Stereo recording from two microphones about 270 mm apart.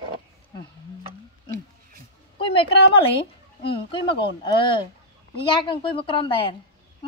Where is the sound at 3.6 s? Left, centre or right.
Centre.